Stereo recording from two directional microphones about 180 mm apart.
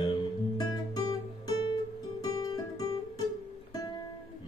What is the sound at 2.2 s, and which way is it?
Music, 20° left (ahead or behind).